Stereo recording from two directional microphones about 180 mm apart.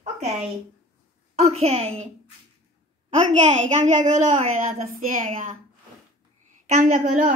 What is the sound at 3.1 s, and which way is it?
A child's voice, 40° right (ahead or behind).